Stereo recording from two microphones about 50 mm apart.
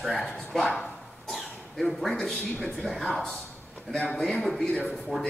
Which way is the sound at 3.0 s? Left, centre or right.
Centre.